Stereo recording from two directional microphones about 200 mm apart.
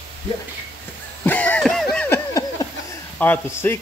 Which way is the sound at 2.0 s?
15° left (ahead or behind).